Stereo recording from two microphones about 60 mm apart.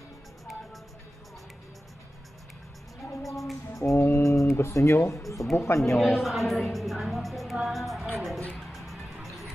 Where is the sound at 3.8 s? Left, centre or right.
Left.